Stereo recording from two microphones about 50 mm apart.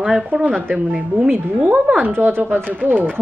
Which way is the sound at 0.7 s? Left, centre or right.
Centre.